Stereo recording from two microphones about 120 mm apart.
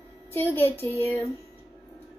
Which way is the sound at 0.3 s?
20° left (ahead or behind).